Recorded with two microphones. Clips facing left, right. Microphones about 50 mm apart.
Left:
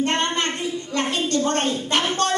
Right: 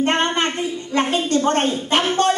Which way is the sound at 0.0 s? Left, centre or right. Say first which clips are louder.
Right 3 dB; right.